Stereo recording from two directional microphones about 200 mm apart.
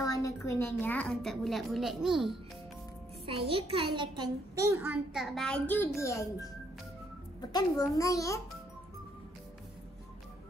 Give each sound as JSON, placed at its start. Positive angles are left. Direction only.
{"t": 0.0, "sound": "a woman's voice", "side_deg": 15}
{"t": 3.3, "sound": "a child's voice", "side_deg": -25}
{"t": 7.5, "sound": "a child's voice", "side_deg": 15}